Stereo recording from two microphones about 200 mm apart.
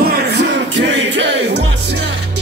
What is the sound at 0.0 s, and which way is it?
Music, 50° right (ahead or behind).